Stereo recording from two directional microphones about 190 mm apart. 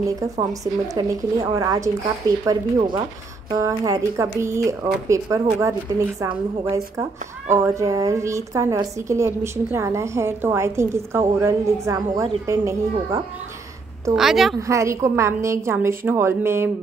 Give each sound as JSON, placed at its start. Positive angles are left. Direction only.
{"t": 0.0, "sound": "speech", "side_deg": -15}
{"t": 7.0, "sound": "speech", "side_deg": -15}
{"t": 14.1, "sound": "a woman's voice", "side_deg": 0}
{"t": 14.7, "sound": "speech", "side_deg": -15}